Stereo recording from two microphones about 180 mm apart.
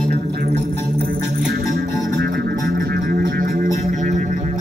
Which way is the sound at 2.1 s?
55° right (ahead or behind).